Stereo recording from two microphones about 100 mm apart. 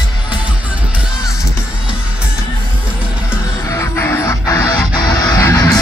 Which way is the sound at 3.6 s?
25° left (ahead or behind).